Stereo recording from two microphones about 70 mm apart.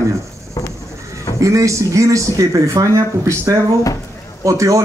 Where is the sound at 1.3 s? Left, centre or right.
Right.